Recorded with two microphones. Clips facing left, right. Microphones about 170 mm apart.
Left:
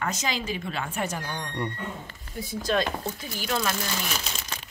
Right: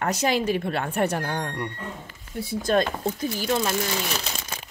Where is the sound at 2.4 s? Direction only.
50° right (ahead or behind).